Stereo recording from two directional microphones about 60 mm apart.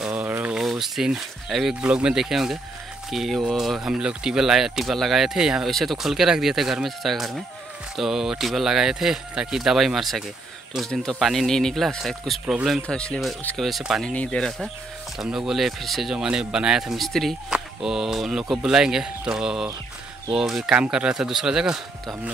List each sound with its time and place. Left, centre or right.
0.0 s a sound: right
0.6 s speech: centre
1.8 s speech: centre
5.7 s speech: centre
12.8 s speech: centre
13.6 s speech: centre
14.0 s speech: centre
15.1 s speech: centre
17.5 s speech: centre
20.7 s speech: centre